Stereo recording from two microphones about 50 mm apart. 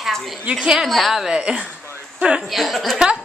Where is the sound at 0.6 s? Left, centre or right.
Centre.